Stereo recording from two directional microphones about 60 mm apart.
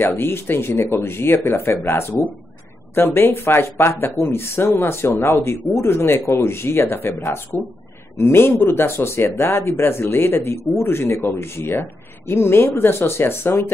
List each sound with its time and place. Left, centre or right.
0.0 s speech: left
2.9 s speech: left